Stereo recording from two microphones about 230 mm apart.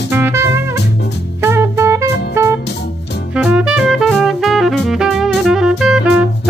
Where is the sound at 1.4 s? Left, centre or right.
Centre.